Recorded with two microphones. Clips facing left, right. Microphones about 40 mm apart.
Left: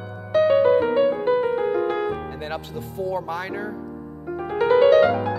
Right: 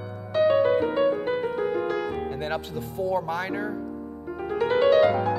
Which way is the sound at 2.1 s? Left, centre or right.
Centre.